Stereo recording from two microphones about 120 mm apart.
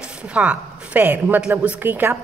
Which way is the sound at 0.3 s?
10° right (ahead or behind).